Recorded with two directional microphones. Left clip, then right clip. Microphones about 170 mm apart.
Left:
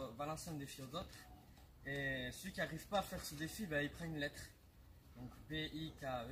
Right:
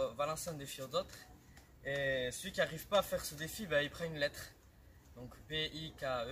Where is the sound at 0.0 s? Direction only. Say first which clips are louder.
Right 9 dB; 25° right (ahead or behind).